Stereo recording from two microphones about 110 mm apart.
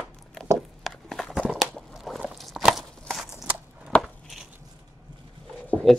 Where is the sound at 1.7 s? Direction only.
Centre (ahead or behind).